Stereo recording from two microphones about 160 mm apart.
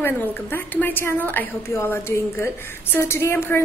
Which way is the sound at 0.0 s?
15° left (ahead or behind).